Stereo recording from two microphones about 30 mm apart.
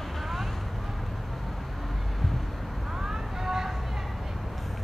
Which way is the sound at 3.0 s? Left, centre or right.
Centre.